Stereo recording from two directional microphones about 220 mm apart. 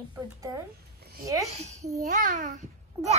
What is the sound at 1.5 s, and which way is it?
A child's voice, 30° right (ahead or behind).